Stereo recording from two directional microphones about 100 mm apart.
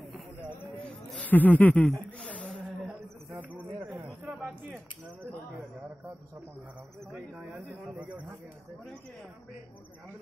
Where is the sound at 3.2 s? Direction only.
20° right (ahead or behind).